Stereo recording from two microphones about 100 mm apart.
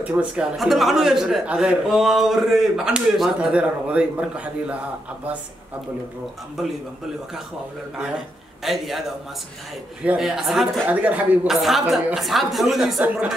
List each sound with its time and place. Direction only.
0.0 s a man's voice: 10° right (ahead or behind)
8.6 s a man's voice: centre (ahead or behind)
10.1 s a man's voice: 5° right (ahead or behind)
10.9 s speech: 15° right (ahead or behind)
11.4 s a man's voice: centre (ahead or behind)